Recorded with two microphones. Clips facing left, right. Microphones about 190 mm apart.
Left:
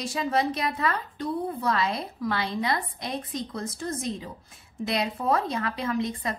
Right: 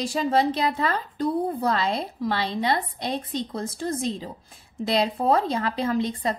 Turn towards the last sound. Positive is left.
turn(degrees=-30)  # may be behind; listen again after turning